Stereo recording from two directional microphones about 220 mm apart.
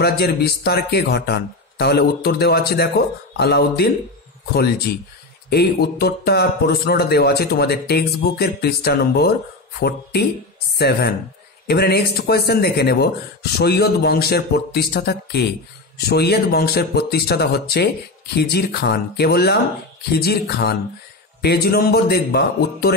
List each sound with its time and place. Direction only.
0.0 s speech: 45° left (ahead or behind)